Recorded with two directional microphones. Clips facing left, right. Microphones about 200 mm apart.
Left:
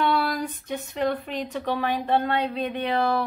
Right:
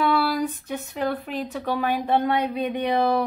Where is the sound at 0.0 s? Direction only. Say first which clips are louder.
Right 2 dB; 5° right (ahead or behind).